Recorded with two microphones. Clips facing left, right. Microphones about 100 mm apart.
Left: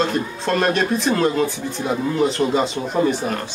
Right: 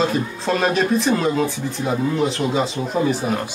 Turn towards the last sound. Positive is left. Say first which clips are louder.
# even
turn(degrees=0)  # may be behind; listen again after turning